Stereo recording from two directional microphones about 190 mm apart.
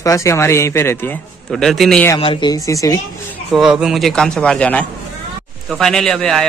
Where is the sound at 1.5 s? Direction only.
Centre (ahead or behind).